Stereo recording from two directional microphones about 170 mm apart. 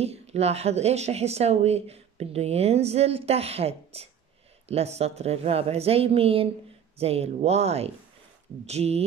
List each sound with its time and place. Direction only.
0.0 s speech: 40° right (ahead or behind)